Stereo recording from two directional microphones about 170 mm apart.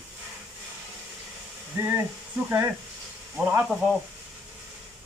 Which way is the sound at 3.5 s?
5° right (ahead or behind).